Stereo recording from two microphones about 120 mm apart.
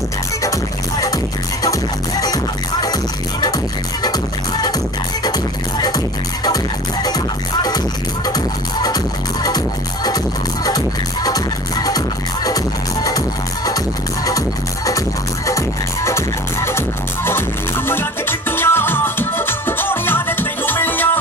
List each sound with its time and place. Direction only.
0.4 s music: 30° left (ahead or behind)
5.8 s speech: 35° left (ahead or behind)
8.8 s speech: 35° left (ahead or behind)
13.7 s music: 30° left (ahead or behind)